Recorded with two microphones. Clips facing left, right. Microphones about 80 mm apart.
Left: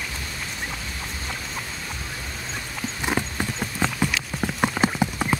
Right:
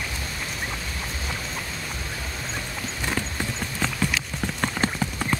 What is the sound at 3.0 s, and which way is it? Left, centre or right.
Clip-clop, centre.